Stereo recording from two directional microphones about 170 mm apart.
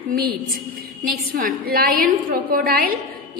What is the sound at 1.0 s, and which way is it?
A woman's voice, 60° right (ahead or behind).